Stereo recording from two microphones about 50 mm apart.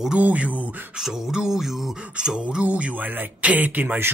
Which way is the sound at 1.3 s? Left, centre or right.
Centre.